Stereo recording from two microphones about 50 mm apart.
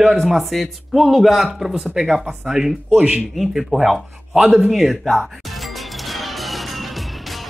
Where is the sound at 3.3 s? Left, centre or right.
Centre.